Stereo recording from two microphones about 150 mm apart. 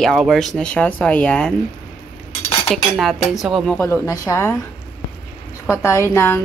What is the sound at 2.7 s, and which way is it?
A man's voice, centre (ahead or behind).